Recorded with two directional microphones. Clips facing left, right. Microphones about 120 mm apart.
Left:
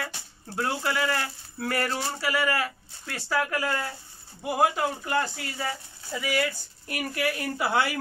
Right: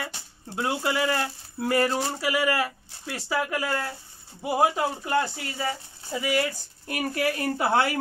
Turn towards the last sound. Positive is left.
turn(degrees=-30)  # may be behind; listen again after turning